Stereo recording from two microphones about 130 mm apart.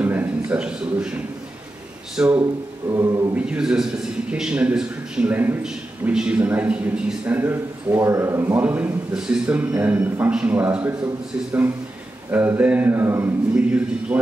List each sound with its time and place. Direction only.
0.0 s a man's voice: 15° right (ahead or behind)
2.9 s a capella: 25° right (ahead or behind)
3.3 s a man's voice: 5° right (ahead or behind)
12.3 s a man's voice: 15° right (ahead or behind)
13.7 s a man's voice: 10° right (ahead or behind)